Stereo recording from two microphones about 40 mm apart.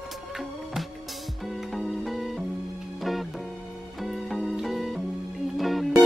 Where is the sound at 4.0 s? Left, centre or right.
Centre.